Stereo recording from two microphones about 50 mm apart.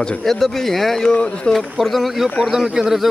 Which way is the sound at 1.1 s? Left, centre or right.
Left.